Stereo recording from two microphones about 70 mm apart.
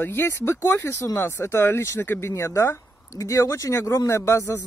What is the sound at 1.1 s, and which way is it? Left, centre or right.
Speech, left.